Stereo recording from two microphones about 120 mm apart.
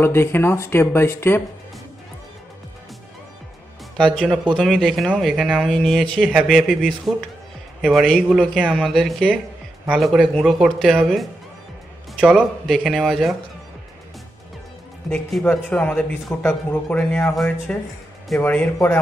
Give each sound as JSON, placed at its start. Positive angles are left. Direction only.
{"t": 0.0, "sound": "speech", "side_deg": 20}
{"t": 3.9, "sound": "speech", "side_deg": 5}
{"t": 12.6, "sound": "speech", "side_deg": 0}
{"t": 15.3, "sound": "a man's voice", "side_deg": 5}